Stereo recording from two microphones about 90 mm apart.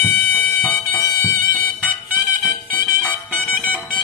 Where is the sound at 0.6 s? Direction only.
15° left (ahead or behind).